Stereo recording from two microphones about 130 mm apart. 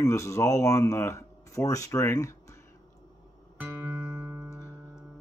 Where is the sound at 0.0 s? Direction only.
25° left (ahead or behind).